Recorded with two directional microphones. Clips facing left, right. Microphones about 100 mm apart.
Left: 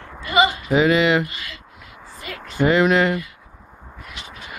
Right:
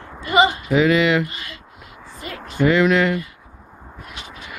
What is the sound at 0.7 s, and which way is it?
Speech, 25° left (ahead or behind).